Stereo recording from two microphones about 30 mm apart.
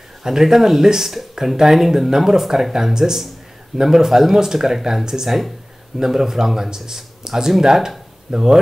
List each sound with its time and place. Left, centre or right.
0.2 s speech: centre